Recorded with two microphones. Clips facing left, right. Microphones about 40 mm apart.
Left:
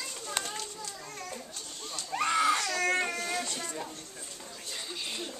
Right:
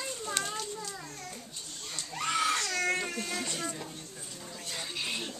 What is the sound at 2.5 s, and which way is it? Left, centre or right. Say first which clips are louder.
Baby cry: left 1 dB; left.